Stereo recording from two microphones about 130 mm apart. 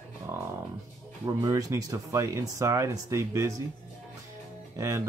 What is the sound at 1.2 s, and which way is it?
Speech, 25° right (ahead or behind).